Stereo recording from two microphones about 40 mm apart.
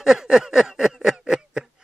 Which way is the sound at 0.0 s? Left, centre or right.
Centre.